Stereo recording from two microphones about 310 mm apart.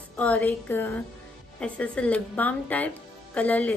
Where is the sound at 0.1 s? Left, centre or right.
Centre.